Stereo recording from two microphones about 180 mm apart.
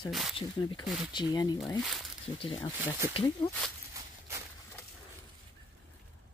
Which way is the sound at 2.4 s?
30° left (ahead or behind).